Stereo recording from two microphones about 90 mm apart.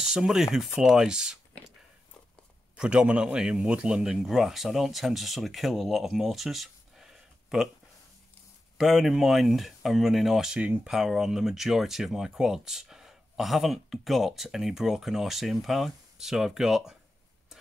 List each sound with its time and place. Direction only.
0.0 s speech: 5° right (ahead or behind)
2.7 s speech: 10° right (ahead or behind)
8.7 s speech: 5° right (ahead or behind)
10.6 s speech: 15° right (ahead or behind)
10.9 s speech: 5° right (ahead or behind)